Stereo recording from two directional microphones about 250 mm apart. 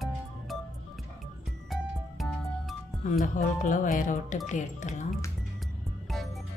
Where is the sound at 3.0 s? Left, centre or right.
Left.